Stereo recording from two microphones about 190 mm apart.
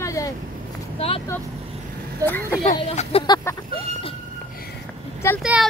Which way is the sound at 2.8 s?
30° left (ahead or behind).